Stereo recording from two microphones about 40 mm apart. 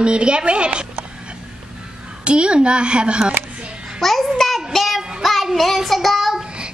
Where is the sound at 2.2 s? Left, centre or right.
Right.